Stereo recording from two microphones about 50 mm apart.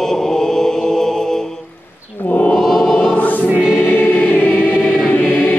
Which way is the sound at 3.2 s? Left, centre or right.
Left.